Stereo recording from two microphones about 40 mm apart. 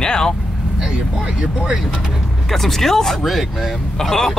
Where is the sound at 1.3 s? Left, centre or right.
Centre.